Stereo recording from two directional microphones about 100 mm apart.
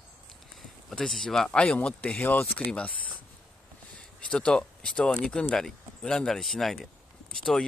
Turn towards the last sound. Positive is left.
turn(degrees=5)  # may be behind; listen again after turning